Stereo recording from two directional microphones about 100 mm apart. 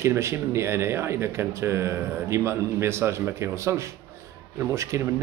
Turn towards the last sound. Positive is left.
turn(degrees=-30)  # may be behind; listen again after turning